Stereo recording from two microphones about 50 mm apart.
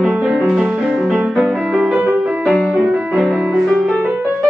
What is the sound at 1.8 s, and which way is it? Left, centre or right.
Music, right.